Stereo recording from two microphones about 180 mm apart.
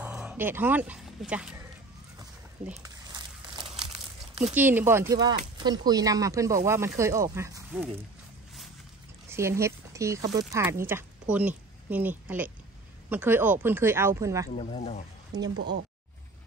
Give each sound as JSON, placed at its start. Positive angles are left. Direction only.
{"t": 0.0, "sound": "speech", "side_deg": -5}
{"t": 3.2, "sound": "crumpling", "side_deg": -30}
{"t": 4.6, "sound": "speech", "side_deg": -10}
{"t": 9.3, "sound": "a woman's voice", "side_deg": -15}
{"t": 14.6, "sound": "speech", "side_deg": 35}
{"t": 15.5, "sound": "speech", "side_deg": -70}